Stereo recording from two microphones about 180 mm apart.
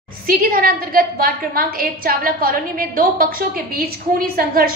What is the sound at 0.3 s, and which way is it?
A woman's voice, 55° right (ahead or behind).